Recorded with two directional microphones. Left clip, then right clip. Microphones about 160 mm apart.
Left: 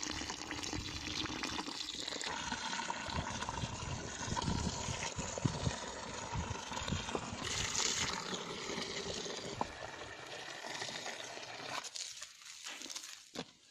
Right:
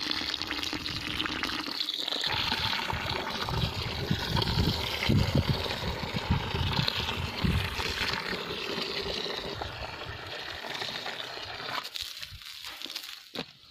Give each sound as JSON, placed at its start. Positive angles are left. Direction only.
{"t": 0.0, "sound": "water", "side_deg": 5}
{"t": 2.3, "sound": "water", "side_deg": -45}
{"t": 7.4, "sound": "a sound", "side_deg": 0}
{"t": 10.8, "sound": "coin", "side_deg": 0}